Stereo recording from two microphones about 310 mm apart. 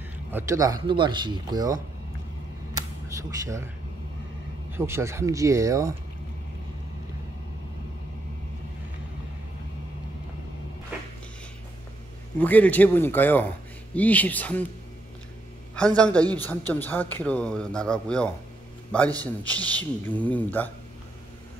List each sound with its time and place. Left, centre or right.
0.3 s speech: centre
2.7 s a sound: centre
4.6 s speech: centre
12.4 s speech: centre
16.0 s speech: centre